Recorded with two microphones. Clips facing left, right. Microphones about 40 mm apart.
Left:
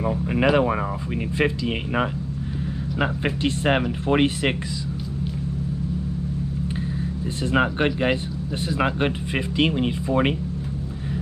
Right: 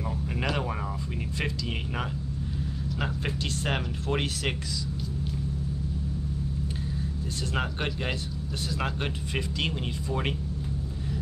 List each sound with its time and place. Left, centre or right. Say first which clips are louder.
0.0 s speech: left 10 dB; left
7.5 s speech: left 11 dB; left